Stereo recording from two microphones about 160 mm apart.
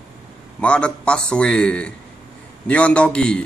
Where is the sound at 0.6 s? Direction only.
5° left (ahead or behind).